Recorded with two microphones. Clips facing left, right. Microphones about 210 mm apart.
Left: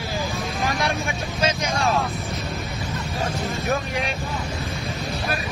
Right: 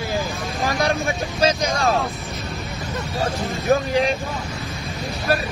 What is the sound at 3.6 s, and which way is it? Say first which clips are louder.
Speech: right 9 dB; 30° right (ahead or behind).